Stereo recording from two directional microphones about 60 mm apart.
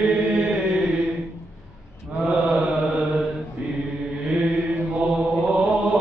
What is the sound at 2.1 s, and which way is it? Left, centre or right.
Mantra, centre.